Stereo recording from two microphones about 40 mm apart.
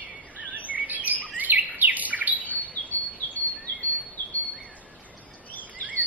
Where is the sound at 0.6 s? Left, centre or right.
Right.